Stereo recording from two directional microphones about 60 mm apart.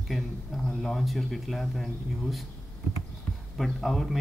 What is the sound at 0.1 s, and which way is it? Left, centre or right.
Speech, centre.